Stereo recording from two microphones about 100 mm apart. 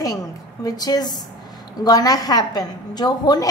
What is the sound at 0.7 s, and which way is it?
A woman's voice, 40° left (ahead or behind).